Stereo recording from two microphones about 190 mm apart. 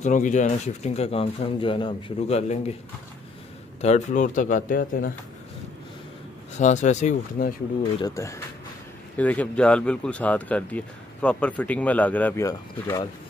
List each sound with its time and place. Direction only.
0.0 s speech: 40° left (ahead or behind)
3.8 s speech: 40° left (ahead or behind)
6.6 s speech: 40° left (ahead or behind)
7.4 s speech: 55° left (ahead or behind)
8.0 s speech: 15° left (ahead or behind)